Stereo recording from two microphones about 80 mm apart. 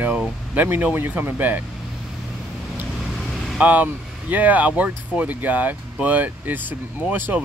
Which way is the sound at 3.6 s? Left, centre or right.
Right.